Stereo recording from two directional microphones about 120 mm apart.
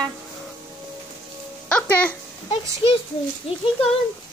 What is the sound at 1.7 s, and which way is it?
Speech, 10° left (ahead or behind).